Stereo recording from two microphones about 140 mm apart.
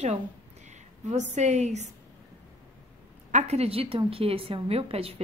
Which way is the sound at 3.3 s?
50° right (ahead or behind).